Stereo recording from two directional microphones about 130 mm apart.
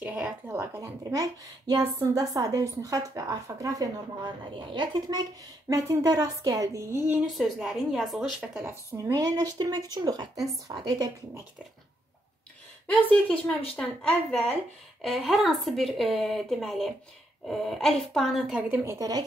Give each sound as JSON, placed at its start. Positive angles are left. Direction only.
{"t": 0.0, "sound": "a sound", "side_deg": -10}
{"t": 0.6, "sound": "speech", "side_deg": -20}
{"t": 7.2, "sound": "speech", "side_deg": 0}
{"t": 8.6, "sound": "a woman's voice", "side_deg": -20}
{"t": 12.9, "sound": "a woman's voice", "side_deg": 10}
{"t": 15.0, "sound": "speech", "side_deg": 0}
{"t": 18.7, "sound": "speech", "side_deg": -25}